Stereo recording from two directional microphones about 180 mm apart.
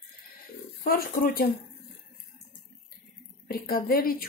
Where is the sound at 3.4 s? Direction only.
55° left (ahead or behind).